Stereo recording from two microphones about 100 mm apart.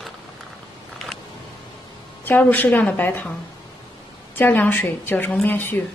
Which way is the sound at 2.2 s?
20° left (ahead or behind).